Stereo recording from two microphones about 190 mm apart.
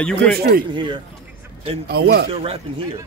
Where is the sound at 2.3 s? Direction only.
30° right (ahead or behind).